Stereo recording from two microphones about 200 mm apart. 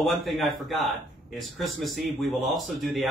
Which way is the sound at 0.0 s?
Centre (ahead or behind).